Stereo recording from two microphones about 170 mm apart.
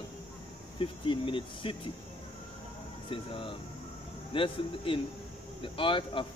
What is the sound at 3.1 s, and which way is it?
Speech, 30° left (ahead or behind).